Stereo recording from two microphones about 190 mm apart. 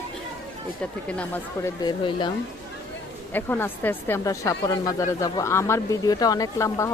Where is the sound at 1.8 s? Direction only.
25° left (ahead or behind).